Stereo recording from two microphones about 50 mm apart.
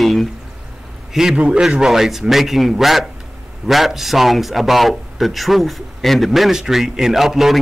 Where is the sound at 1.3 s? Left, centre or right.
Right.